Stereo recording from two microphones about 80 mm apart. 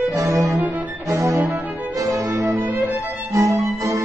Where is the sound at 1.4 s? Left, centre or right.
Centre.